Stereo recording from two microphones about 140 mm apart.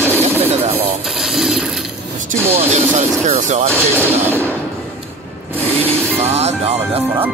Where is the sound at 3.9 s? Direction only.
15° right (ahead or behind).